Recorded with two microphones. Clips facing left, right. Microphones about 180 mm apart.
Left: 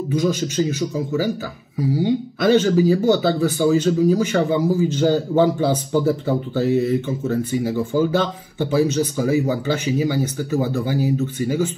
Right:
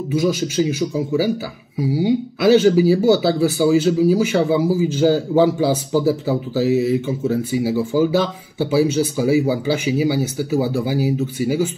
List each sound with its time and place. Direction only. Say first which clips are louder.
0.1 s speech: right 2 dB; 10° right (ahead or behind)